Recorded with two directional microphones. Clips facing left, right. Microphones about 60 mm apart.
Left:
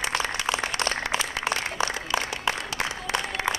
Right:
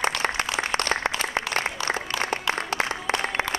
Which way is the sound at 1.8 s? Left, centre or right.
Left.